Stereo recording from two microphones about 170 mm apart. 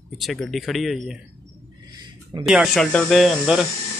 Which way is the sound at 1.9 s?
25° right (ahead or behind).